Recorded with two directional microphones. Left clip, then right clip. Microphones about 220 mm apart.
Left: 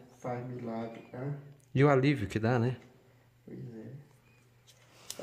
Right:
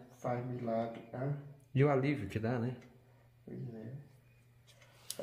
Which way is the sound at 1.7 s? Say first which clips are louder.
Left 5 dB; 40° left (ahead or behind).